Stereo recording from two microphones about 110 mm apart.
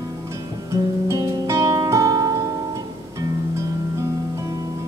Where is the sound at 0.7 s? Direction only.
30° right (ahead or behind).